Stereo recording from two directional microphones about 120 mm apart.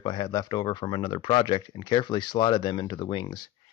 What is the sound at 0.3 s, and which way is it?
Speech, 30° left (ahead or behind).